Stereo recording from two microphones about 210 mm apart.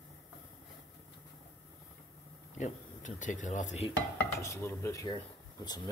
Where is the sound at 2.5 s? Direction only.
35° left (ahead or behind).